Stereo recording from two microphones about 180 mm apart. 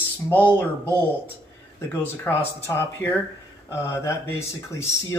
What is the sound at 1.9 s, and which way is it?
Speech, 15° left (ahead or behind).